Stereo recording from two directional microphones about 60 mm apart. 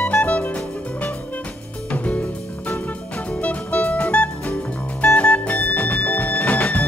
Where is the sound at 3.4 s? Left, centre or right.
Left.